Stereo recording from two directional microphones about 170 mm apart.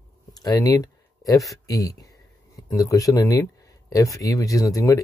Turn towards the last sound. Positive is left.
turn(degrees=20)  # may be behind; listen again after turning